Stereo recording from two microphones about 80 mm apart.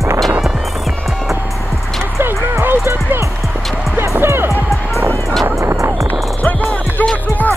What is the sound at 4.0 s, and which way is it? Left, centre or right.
Music, right.